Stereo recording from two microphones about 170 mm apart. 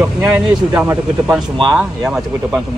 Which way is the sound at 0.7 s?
10° right (ahead or behind).